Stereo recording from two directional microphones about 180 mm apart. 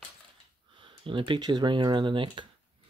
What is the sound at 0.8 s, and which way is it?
Speech, 30° right (ahead or behind).